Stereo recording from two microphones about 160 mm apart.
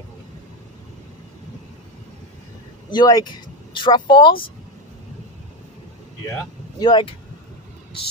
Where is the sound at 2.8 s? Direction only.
25° left (ahead or behind).